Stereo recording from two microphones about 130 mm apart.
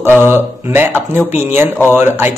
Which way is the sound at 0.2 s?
15° right (ahead or behind).